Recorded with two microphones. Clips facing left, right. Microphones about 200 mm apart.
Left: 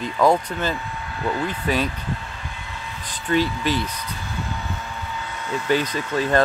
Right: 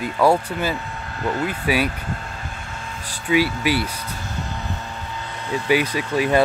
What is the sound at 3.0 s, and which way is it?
Speech, 10° right (ahead or behind).